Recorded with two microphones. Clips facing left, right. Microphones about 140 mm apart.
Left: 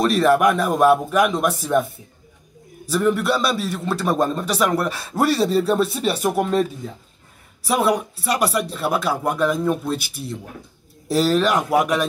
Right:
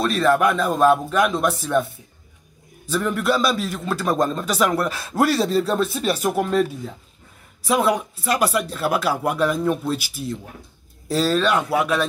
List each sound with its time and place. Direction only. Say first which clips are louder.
0.0 s speech: left 2 dB; 15° left (ahead or behind)
2.9 s a man's voice: left 2 dB; 5° left (ahead or behind)
7.6 s a man's voice: even; 5° left (ahead or behind)
11.1 s speech: left 2 dB; 10° left (ahead or behind)